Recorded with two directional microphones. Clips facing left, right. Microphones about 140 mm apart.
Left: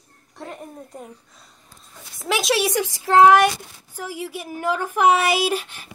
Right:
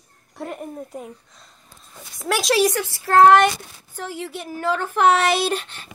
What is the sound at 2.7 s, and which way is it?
Speech, 15° left (ahead or behind).